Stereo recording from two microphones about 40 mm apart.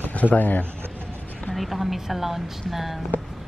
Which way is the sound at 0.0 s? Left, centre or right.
Left.